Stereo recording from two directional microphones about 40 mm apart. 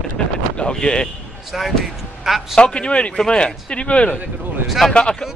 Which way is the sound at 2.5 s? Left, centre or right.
Left.